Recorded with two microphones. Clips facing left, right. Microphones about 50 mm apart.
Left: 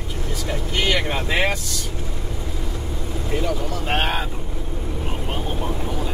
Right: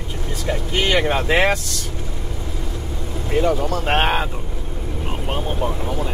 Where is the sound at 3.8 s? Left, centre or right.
Right.